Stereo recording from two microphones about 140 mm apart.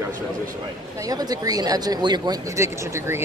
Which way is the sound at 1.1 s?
25° right (ahead or behind).